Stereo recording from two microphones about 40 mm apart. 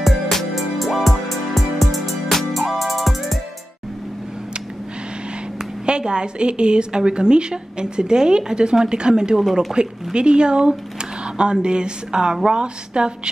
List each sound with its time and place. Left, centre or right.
0.0 s music: centre
5.9 s a woman's voice: right